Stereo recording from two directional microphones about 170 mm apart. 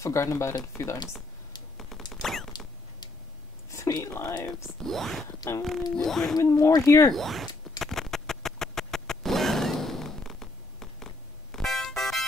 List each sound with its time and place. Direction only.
0.0 s speech: 15° left (ahead or behind)
1.8 s a sound: centre (ahead or behind)
2.2 s rodents: centre (ahead or behind)
3.7 s speech: 20° left (ahead or behind)
4.6 s speech: centre (ahead or behind)
6.3 s speech: 15° left (ahead or behind)
7.1 s speech: centre (ahead or behind)
7.8 s a sound: centre (ahead or behind)